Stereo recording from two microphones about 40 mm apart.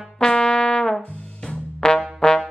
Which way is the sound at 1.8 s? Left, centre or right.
Centre.